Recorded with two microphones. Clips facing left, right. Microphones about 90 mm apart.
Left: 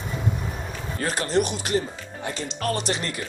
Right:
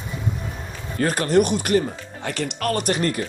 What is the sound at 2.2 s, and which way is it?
Speech, 65° right (ahead or behind).